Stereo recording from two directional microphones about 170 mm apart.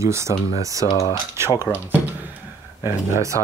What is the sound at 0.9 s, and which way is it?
Speech, 20° left (ahead or behind).